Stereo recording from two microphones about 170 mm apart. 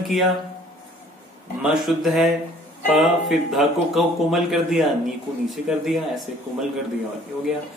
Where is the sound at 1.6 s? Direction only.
Centre (ahead or behind).